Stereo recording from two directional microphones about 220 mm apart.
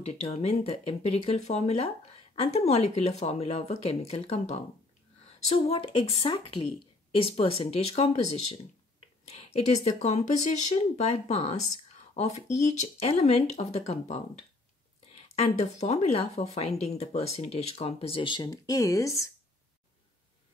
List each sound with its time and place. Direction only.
0.0 s speech: 30° left (ahead or behind)
9.8 s speech: 30° left (ahead or behind)
15.2 s speech: 30° left (ahead or behind); by 19.3 s 15° left (ahead or behind)